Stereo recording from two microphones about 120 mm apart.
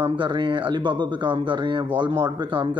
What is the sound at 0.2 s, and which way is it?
Speech, 40° right (ahead or behind).